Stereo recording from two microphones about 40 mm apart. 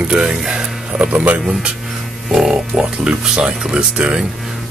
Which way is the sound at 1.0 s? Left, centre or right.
Right.